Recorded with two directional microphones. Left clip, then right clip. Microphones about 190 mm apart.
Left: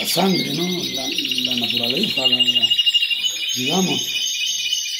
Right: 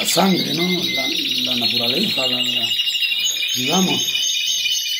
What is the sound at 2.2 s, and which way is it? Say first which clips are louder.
Speech: left 3 dB; 15° right (ahead or behind).